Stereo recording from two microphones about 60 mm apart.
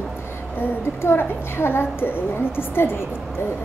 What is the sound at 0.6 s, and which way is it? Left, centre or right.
A woman's voice, left.